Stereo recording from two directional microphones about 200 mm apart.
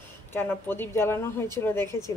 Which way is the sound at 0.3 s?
10° left (ahead or behind).